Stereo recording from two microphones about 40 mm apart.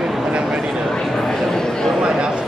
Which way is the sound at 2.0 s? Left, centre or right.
Right.